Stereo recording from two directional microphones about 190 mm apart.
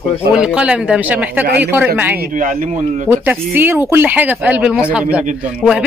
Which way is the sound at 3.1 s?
10° right (ahead or behind).